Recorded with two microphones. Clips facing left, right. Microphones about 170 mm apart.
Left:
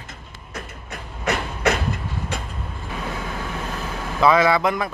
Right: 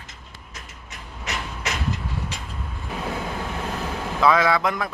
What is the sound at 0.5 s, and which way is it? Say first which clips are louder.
Train: left 9 dB; 60° left (ahead or behind).